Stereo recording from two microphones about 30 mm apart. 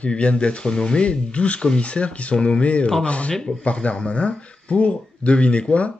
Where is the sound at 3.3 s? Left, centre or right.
Left.